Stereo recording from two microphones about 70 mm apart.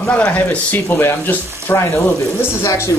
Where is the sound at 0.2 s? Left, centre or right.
Left.